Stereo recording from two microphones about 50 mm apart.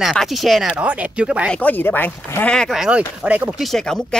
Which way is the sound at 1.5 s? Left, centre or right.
Left.